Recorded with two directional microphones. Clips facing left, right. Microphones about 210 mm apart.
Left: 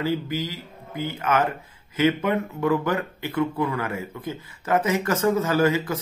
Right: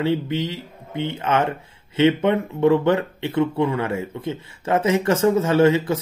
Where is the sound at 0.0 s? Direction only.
25° right (ahead or behind).